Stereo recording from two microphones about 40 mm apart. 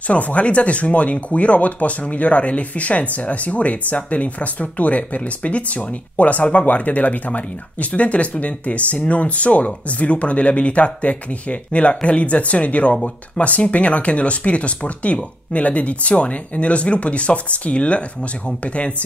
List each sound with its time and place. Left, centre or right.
0.0 s speech: left